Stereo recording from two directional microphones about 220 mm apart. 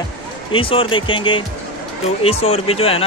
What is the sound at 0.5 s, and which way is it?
Speech, 25° left (ahead or behind).